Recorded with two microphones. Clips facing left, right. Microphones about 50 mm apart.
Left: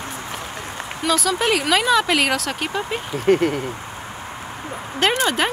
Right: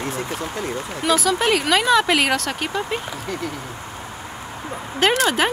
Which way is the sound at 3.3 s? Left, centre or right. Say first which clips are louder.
Left 13 dB; left.